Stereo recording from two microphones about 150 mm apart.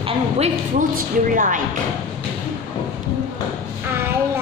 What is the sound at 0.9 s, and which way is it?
Speech, 60° right (ahead or behind).